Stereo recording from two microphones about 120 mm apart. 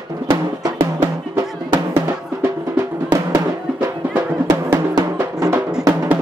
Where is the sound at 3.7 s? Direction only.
20° right (ahead or behind).